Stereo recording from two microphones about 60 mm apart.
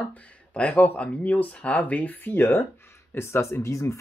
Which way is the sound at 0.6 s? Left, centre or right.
Left.